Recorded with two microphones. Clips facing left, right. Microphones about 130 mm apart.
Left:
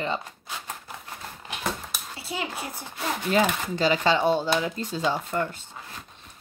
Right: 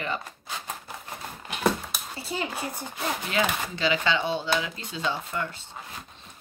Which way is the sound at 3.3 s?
40° left (ahead or behind).